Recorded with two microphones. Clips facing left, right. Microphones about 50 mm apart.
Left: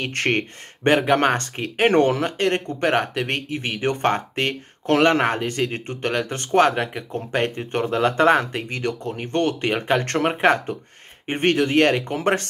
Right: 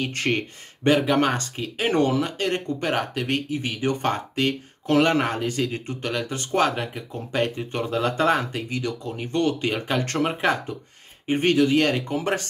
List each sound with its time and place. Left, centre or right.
0.0 s speech: left
6.9 s speech: left